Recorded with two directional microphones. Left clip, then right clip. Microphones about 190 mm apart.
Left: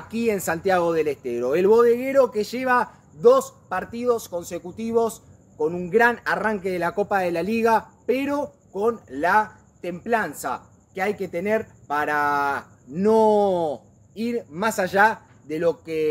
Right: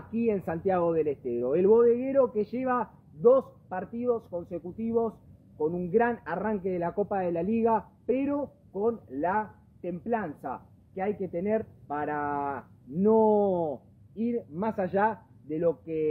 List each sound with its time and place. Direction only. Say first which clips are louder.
0.1 s a man's voice: left 5 dB; 20° left (ahead or behind)